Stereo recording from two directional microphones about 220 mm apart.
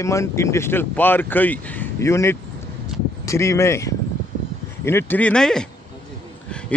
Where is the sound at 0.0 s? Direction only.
15° left (ahead or behind).